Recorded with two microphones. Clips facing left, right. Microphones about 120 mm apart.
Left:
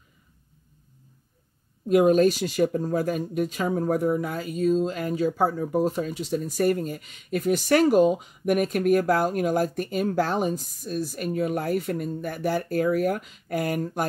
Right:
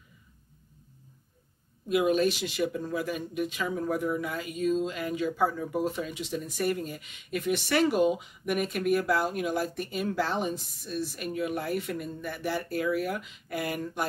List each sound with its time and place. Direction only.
1.9 s speech: 45° left (ahead or behind)